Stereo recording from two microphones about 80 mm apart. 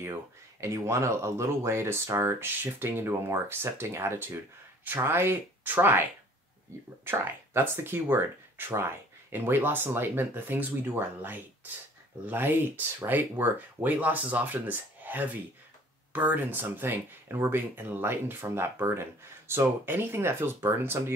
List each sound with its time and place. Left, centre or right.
0.0 s speech: right
7.1 s speech: right